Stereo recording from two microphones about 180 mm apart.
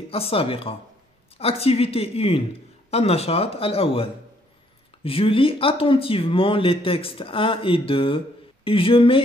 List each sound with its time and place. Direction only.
0.1 s speech: 30° left (ahead or behind)